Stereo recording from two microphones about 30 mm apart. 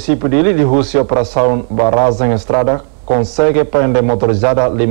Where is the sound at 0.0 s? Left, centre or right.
Centre.